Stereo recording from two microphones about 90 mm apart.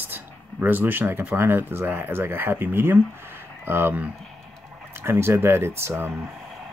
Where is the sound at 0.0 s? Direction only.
20° right (ahead or behind).